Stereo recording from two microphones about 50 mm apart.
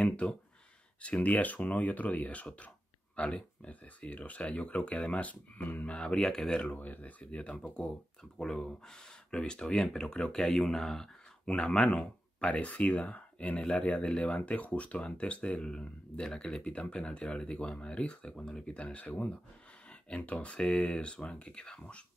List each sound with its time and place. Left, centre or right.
0.0 s speech: left
5.9 s speech: centre
6.7 s speech: left
8.2 s speech: centre
11.4 s speech: left
19.9 s a sound: left
20.4 s speech: left